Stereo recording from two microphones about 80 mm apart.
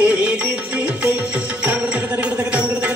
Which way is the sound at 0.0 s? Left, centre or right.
Centre.